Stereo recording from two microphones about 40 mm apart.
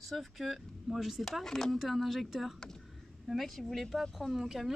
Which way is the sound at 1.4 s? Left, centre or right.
Centre.